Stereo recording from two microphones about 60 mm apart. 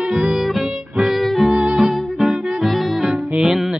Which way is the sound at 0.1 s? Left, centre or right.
Centre.